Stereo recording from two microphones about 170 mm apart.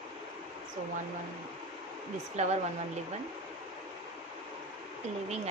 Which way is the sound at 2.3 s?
45° right (ahead or behind).